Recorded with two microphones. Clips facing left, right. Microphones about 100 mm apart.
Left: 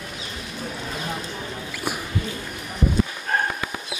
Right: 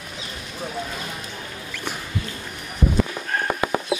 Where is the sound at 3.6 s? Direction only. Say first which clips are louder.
Right 8 dB; 45° right (ahead or behind).